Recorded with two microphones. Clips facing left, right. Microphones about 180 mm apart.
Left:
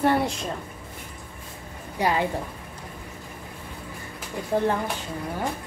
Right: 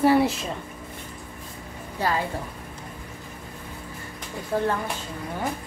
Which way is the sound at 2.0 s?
15° left (ahead or behind).